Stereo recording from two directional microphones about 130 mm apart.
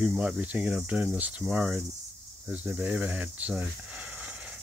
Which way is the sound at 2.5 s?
10° right (ahead or behind).